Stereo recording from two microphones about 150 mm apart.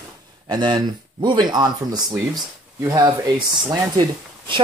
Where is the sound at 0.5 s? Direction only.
30° right (ahead or behind).